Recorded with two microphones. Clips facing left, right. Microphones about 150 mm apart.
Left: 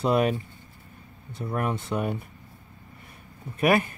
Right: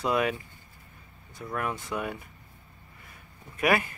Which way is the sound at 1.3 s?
30° left (ahead or behind).